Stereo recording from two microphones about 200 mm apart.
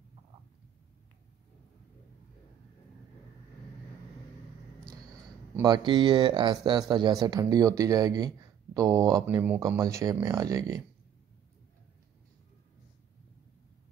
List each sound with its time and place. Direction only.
5.6 s speech: 20° right (ahead or behind)